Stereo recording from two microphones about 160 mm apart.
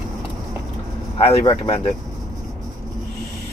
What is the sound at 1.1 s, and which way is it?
Speech, 40° left (ahead or behind).